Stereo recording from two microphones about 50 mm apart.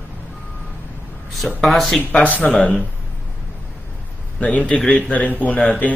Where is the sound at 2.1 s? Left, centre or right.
Left.